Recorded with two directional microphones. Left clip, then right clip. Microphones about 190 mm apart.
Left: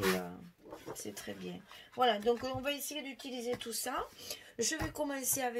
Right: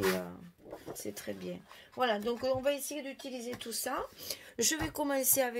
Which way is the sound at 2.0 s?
40° right (ahead or behind).